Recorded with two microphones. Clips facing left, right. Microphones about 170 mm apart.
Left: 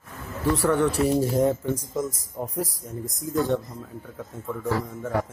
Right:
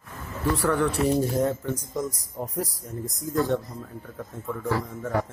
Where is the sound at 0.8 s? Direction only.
30° left (ahead or behind).